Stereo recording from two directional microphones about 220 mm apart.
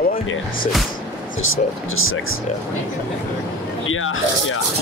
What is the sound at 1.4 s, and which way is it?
Speech, 65° left (ahead or behind).